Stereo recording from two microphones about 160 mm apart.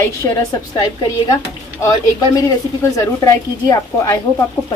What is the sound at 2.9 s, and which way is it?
Speech, 20° left (ahead or behind).